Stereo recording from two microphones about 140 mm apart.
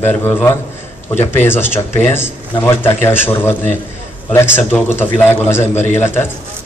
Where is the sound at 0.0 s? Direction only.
15° left (ahead or behind).